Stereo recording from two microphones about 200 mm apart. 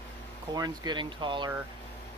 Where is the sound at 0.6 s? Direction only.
20° right (ahead or behind).